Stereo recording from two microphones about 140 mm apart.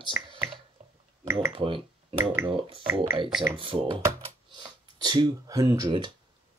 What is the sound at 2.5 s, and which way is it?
Speech, 40° right (ahead or behind).